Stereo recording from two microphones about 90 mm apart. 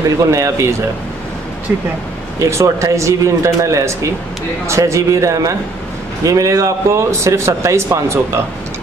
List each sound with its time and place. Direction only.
0.2 s speech: 35° right (ahead or behind)
2.3 s speech: 35° right (ahead or behind)